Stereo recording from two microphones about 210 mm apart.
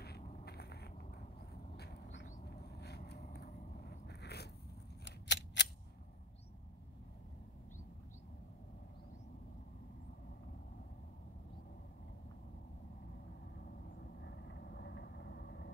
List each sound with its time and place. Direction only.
0.5 s cat: 50° left (ahead or behind)
1.5 s a sound: 50° left (ahead or behind)
5.0 s scissors: 55° left (ahead or behind)
14.2 s vehicle: 50° left (ahead or behind)